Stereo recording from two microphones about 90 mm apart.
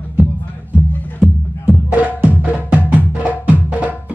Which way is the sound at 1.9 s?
20° right (ahead or behind).